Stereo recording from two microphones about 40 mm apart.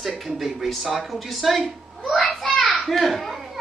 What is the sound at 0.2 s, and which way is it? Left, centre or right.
Speech, centre.